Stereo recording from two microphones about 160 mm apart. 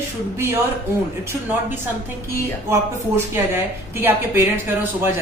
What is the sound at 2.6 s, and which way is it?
A woman's voice, 15° right (ahead or behind).